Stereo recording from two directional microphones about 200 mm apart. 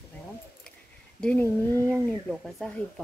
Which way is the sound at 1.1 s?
10° left (ahead or behind).